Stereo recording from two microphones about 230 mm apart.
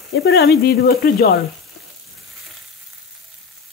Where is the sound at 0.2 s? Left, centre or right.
Left.